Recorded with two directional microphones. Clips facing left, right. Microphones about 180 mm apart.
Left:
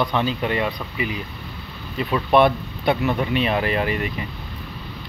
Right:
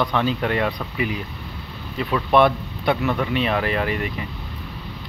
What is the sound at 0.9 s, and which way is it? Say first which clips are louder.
Speech: right 2 dB; 50° right (ahead or behind).